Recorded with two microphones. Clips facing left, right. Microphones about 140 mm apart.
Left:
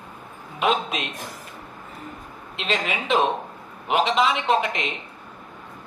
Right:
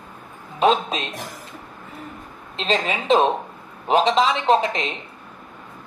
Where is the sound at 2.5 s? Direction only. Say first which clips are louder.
Right 3 dB; 35° right (ahead or behind).